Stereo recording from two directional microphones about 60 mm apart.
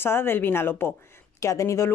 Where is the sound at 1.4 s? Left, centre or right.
Left.